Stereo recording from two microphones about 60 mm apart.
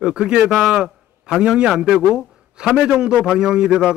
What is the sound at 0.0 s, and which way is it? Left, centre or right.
Speech, centre.